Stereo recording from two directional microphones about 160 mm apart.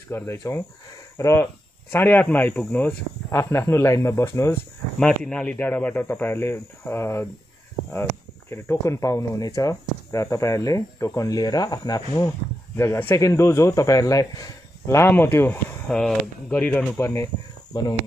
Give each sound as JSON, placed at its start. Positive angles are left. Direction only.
{"t": 0.1, "sound": "speech", "side_deg": 15}
{"t": 5.0, "sound": "speech", "side_deg": 5}